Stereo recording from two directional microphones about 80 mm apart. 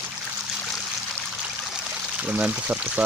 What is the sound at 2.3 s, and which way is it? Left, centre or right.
Speech, centre.